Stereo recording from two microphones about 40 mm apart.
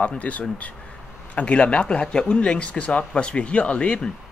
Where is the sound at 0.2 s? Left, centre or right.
Left.